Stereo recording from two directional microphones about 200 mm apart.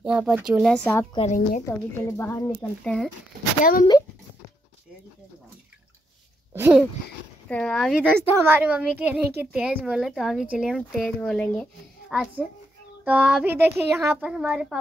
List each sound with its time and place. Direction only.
0.0 s speech: 5° right (ahead or behind)
1.1 s a woman's voice: 35° left (ahead or behind)
1.7 s speech: 10° left (ahead or behind)
6.5 s speech: 10° right (ahead or behind)
7.4 s speech: 5° left (ahead or behind)
8.2 s a child's voice: 10° right (ahead or behind)